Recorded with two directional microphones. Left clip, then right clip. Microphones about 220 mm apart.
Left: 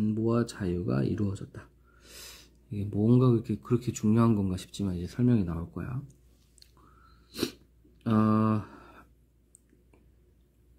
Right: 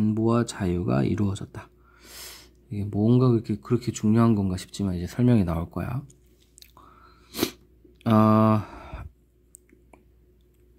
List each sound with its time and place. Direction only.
0.0 s speech: 30° right (ahead or behind)
7.2 s a sound: 35° right (ahead or behind)
8.0 s speech: 35° right (ahead or behind)